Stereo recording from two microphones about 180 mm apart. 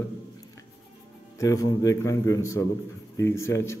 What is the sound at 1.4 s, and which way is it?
A man's voice, 20° left (ahead or behind).